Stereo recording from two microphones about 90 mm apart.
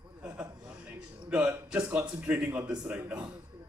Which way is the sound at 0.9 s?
15° right (ahead or behind).